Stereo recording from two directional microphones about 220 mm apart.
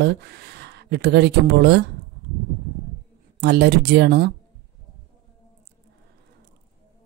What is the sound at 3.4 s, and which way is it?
Speech, 50° right (ahead or behind).